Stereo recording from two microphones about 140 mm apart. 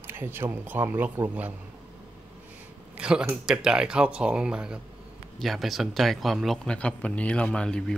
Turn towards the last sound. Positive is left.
turn(degrees=5)  # may be behind; listen again after turning